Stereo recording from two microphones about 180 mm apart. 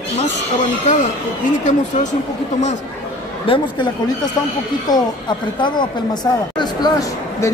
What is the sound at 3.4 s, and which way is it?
Speech, 30° left (ahead or behind).